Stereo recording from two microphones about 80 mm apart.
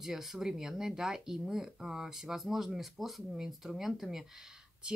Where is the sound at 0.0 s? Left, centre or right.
Centre.